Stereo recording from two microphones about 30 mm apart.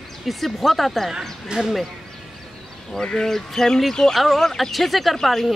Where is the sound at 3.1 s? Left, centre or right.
Centre.